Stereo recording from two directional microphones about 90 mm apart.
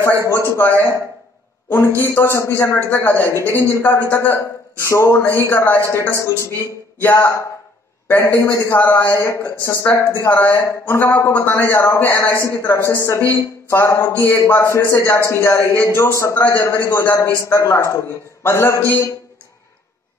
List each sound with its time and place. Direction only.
0.3 s a man's voice: 25° left (ahead or behind)
0.7 s speech: 35° right (ahead or behind)
2.0 s a man's voice: 30° left (ahead or behind)
8.4 s a man's voice: 35° left (ahead or behind)